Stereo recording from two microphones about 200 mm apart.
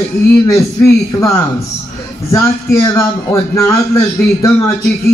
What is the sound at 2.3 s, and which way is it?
A man's voice, 15° left (ahead or behind).